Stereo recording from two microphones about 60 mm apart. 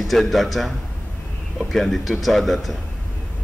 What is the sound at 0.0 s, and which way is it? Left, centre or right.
Speech, centre.